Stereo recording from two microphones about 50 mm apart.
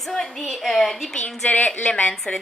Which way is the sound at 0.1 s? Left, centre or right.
Centre.